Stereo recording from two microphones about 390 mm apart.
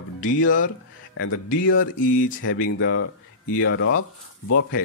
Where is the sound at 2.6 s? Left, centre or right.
Left.